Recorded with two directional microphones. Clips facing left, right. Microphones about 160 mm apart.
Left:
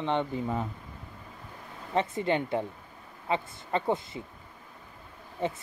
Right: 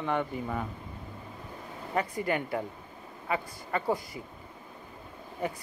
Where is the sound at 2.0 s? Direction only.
25° left (ahead or behind).